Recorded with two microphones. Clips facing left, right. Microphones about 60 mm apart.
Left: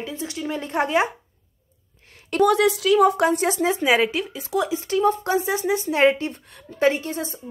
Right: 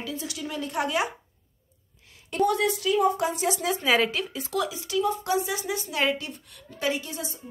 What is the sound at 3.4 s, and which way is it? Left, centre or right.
Speech, left.